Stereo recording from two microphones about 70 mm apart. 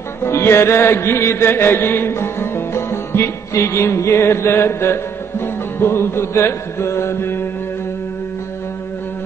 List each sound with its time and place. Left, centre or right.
0.2 s music: left